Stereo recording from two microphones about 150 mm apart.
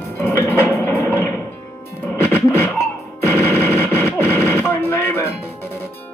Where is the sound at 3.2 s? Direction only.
15° left (ahead or behind).